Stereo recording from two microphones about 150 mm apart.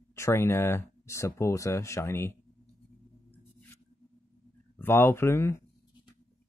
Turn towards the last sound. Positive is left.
turn(degrees=15)  # may be behind; listen again after turning